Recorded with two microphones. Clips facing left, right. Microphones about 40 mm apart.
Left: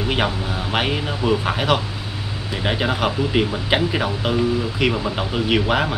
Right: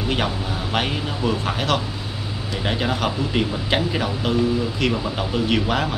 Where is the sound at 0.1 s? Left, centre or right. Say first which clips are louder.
Left 1 dB; centre.